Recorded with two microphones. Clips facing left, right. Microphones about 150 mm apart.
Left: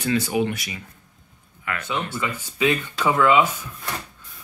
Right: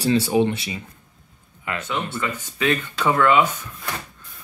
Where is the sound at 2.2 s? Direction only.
15° left (ahead or behind).